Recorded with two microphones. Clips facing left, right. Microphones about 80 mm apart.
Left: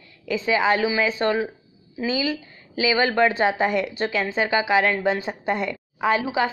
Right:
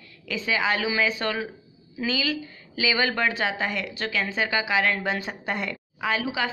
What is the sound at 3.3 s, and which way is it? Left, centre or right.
Speech, left.